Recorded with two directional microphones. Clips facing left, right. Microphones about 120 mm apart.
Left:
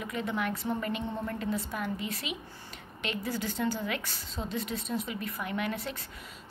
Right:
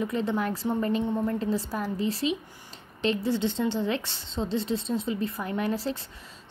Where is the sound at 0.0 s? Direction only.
30° right (ahead or behind).